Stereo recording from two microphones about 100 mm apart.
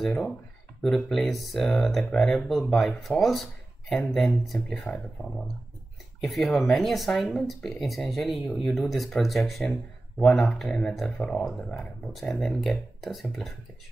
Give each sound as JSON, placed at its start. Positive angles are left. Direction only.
{"t": 0.0, "sound": "speech", "side_deg": 5}
{"t": 6.2, "sound": "speech", "side_deg": 0}